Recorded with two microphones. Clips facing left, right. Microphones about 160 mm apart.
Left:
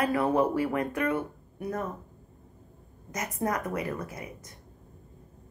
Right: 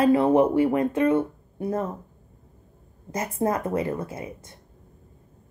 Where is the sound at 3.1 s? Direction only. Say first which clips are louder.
Right 5 dB; 30° right (ahead or behind).